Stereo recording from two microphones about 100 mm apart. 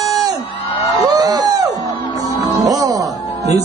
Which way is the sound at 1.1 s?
40° right (ahead or behind).